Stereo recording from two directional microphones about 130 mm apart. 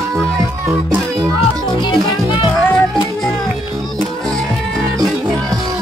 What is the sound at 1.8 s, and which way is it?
Music, 40° left (ahead or behind).